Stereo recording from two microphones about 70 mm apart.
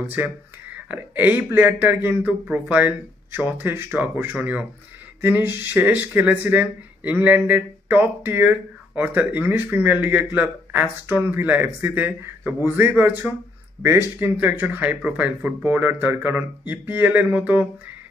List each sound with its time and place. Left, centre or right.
0.1 s speech: right
3.3 s speech: right